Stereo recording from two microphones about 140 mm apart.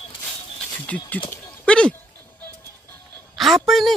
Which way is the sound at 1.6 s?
5° left (ahead or behind).